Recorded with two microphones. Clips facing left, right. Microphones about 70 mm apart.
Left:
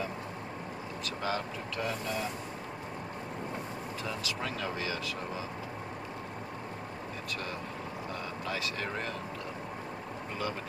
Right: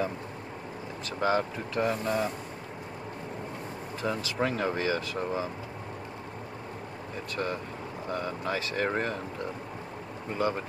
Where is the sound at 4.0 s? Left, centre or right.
Right.